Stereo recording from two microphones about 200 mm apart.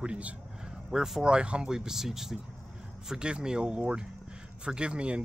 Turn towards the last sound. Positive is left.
turn(degrees=-5)  # may be behind; listen again after turning